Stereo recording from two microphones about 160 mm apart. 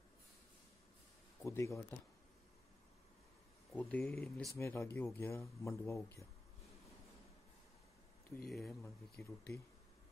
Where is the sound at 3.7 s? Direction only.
10° left (ahead or behind).